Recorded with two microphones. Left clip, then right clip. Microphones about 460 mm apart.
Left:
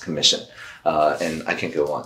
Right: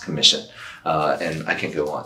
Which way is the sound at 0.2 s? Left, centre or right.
Left.